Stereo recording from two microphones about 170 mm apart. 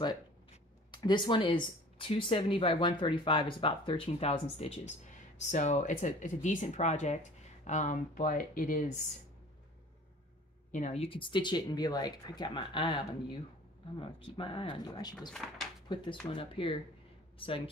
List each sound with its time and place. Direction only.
0.9 s speech: 25° left (ahead or behind); by 8.9 s 55° left (ahead or behind)
10.7 s speech: 45° left (ahead or behind); by 15.1 s 25° left (ahead or behind)
15.3 s speech: centre (ahead or behind)
16.3 s speech: 30° left (ahead or behind)